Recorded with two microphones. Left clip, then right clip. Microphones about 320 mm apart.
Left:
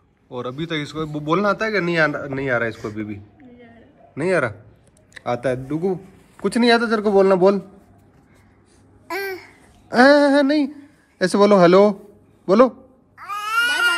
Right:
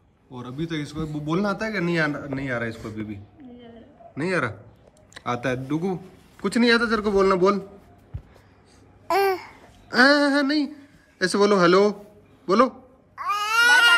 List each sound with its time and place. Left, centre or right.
0.3 s a man's voice: centre
4.1 s a man's voice: centre
9.0 s babbling: centre
9.8 s a man's voice: centre
13.1 s babbling: centre